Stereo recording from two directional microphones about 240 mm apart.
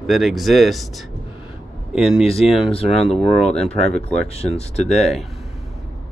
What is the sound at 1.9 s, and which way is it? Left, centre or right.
Speech, centre.